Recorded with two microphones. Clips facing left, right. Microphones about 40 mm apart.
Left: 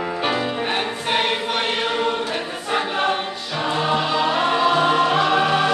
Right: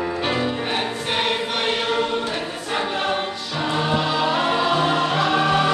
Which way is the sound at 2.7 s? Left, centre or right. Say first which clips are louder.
Left 2 dB; centre.